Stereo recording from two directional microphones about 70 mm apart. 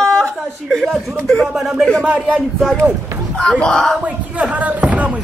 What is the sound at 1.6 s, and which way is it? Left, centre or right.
Speech, centre.